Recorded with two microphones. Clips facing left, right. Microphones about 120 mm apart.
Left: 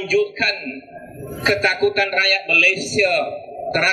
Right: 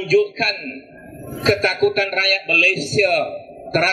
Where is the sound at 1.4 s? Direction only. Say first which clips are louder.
Right 1 dB; 30° right (ahead or behind).